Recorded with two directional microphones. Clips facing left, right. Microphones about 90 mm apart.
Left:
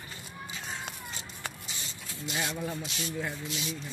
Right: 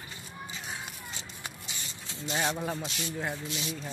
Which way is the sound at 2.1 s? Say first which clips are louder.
Right 4 dB; 30° right (ahead or behind).